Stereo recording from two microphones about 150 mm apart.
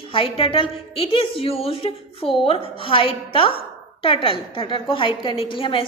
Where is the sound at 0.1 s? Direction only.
35° left (ahead or behind).